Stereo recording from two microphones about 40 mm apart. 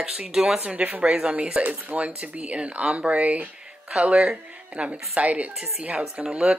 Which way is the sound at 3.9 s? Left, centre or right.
Right.